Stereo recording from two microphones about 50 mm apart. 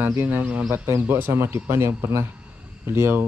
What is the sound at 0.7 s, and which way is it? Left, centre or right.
Speech, right.